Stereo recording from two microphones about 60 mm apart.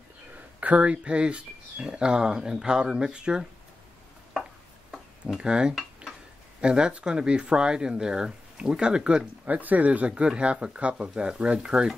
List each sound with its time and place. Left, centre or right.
0.6 s speech: right
5.4 s speech: centre
9.6 s speech: right